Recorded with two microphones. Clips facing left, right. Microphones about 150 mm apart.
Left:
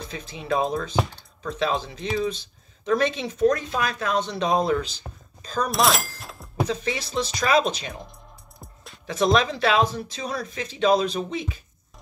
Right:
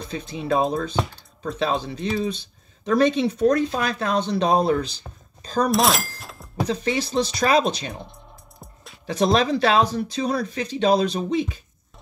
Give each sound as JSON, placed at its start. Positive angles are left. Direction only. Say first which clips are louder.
{"t": 0.1, "sound": "speech", "louder": "right 3 dB", "side_deg": -40}
{"t": 5.7, "sound": "a sound", "louder": "even", "side_deg": 0}
{"t": 6.7, "sound": "speech", "louder": "right 8 dB", "side_deg": -35}